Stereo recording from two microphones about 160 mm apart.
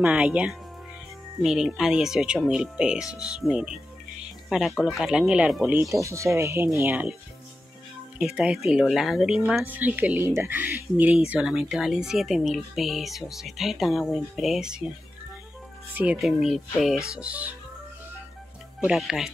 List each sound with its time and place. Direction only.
0.0 s speech: 5° right (ahead or behind)
5.9 s speech: 20° right (ahead or behind)
8.4 s speech: 5° right (ahead or behind)
15.9 s speech: 10° right (ahead or behind)
16.2 s speech: centre (ahead or behind)
18.8 s speech: 5° right (ahead or behind)